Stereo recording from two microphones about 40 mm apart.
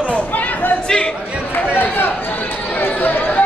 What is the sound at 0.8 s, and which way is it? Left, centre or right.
Speech, left.